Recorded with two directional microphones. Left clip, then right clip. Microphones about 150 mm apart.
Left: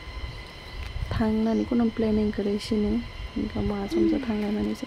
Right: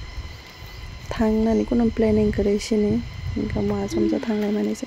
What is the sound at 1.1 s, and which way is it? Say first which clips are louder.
Speech: right 5 dB; 40° right (ahead or behind).